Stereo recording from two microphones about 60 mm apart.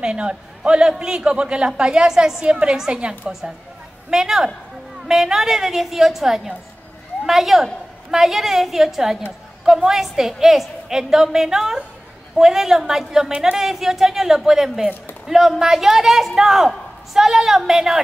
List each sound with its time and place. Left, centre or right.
0.0 s a man's voice: centre